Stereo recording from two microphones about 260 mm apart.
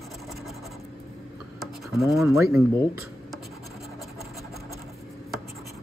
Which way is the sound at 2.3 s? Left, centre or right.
Centre.